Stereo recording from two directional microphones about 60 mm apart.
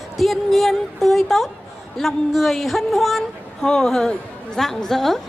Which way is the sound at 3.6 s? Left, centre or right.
Centre.